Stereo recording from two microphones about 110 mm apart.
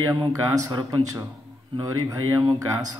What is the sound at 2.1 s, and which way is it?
Speech, 30° right (ahead or behind).